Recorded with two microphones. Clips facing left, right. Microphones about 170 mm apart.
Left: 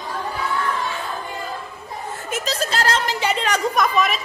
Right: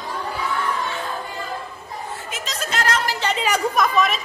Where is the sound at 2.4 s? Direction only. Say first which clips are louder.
Left 2 dB; 35° left (ahead or behind).